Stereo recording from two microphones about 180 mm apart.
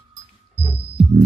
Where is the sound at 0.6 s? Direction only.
35° right (ahead or behind).